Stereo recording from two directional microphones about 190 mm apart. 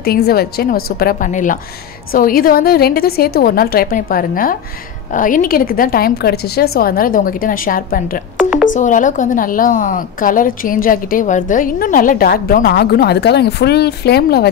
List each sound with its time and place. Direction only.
0.0 s a woman's voice: 55° left (ahead or behind)
8.4 s music: 5° right (ahead or behind)
8.7 s a woman's voice: 40° left (ahead or behind); by 14.5 s 55° left (ahead or behind)